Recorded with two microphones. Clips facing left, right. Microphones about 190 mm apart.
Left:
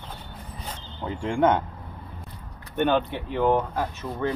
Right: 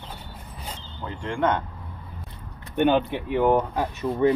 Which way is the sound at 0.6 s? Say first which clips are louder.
Left 2 dB; 10° right (ahead or behind).